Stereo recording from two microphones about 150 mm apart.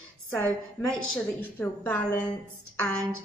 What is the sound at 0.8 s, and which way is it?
A woman's voice, 5° left (ahead or behind).